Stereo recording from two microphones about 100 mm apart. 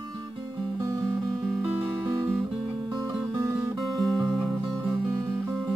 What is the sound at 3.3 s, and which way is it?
Music, 25° right (ahead or behind).